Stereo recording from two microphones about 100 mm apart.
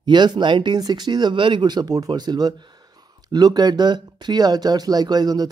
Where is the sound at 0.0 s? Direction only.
50° right (ahead or behind).